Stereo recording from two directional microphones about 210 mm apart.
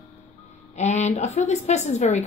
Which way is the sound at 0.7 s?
35° left (ahead or behind).